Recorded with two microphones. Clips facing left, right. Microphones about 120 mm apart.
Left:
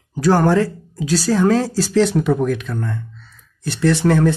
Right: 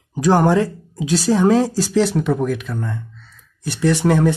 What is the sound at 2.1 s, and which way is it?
Speech, centre (ahead or behind).